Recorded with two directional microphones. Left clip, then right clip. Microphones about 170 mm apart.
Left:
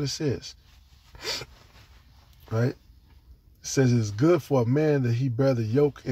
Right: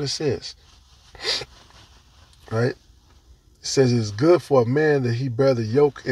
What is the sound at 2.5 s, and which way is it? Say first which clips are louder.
Speech: right 5 dB; 10° left (ahead or behind).